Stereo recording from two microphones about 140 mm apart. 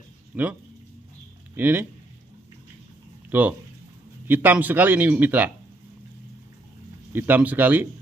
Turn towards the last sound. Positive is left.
turn(degrees=-15)  # may be behind; listen again after turning